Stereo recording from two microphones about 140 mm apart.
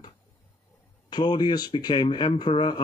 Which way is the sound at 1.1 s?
30° left (ahead or behind).